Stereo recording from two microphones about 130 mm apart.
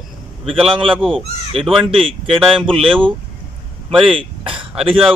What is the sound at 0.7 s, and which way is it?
A man's voice, 40° right (ahead or behind).